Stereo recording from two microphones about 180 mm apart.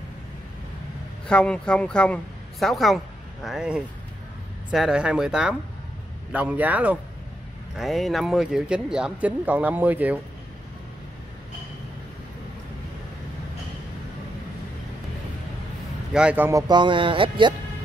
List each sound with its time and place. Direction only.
1.2 s speech: 5° left (ahead or behind)
16.1 s speech: 5° right (ahead or behind); by 17.6 s 25° right (ahead or behind)